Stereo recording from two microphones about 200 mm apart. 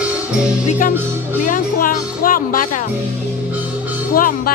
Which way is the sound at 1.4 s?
45° left (ahead or behind).